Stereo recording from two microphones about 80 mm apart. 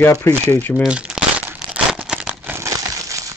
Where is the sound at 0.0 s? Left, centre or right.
Left.